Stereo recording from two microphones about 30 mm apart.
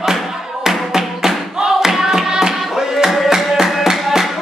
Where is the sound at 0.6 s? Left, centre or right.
Centre.